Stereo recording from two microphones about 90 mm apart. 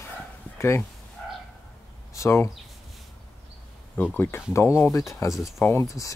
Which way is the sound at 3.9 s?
20° left (ahead or behind).